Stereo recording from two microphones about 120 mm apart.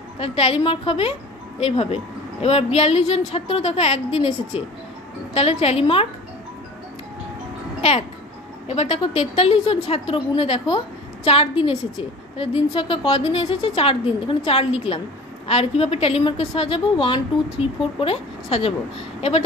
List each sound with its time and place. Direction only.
0.2 s a woman's voice: 50° left (ahead or behind)
8.6 s a woman's voice: 55° left (ahead or behind)